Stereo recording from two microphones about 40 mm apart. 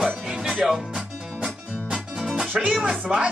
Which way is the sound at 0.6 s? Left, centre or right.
Centre.